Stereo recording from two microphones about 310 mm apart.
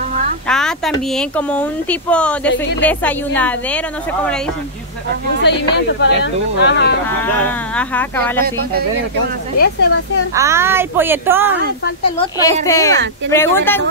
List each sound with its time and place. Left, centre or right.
0.5 s speech: centre
5.5 s speech: left
7.1 s speech: centre
9.6 s speech: left
10.3 s speech: centre
12.6 s speech: centre